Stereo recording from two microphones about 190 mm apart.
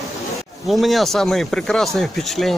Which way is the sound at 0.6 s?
Centre (ahead or behind).